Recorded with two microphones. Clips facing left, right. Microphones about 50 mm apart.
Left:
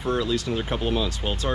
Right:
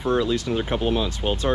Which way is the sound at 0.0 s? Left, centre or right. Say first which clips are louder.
Right 3 dB; right.